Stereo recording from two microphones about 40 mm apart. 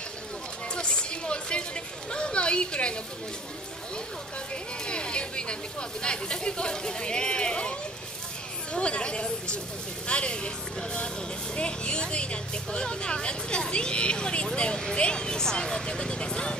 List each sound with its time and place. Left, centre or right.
0.7 s music: left
2.0 s a sound: left
4.8 s speech: left
8.7 s speech: left